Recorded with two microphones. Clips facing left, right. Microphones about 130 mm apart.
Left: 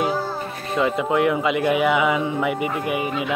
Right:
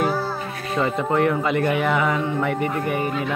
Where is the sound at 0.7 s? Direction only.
5° left (ahead or behind).